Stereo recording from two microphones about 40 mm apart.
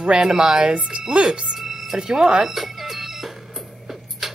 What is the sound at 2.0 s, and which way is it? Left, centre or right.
Speech, centre.